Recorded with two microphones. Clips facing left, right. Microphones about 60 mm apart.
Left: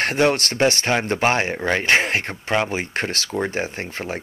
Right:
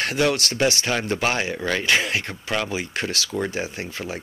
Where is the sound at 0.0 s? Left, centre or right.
Left.